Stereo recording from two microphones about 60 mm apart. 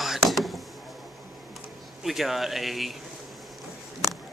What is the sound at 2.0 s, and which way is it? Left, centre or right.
Speech, centre.